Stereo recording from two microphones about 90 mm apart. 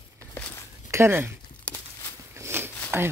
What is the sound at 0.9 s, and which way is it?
Speech, 25° right (ahead or behind).